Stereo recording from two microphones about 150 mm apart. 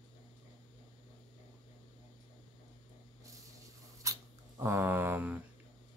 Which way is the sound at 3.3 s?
20° right (ahead or behind).